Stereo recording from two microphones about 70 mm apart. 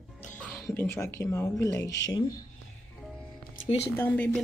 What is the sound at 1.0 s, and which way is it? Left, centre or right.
Speech, left.